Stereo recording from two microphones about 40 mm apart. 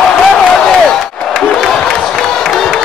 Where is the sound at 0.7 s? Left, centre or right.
Centre.